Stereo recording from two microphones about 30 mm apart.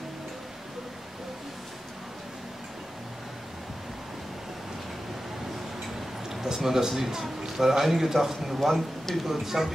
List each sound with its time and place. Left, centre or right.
6.4 s a man's voice: centre